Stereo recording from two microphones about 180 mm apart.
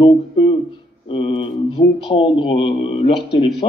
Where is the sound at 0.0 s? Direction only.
30° left (ahead or behind).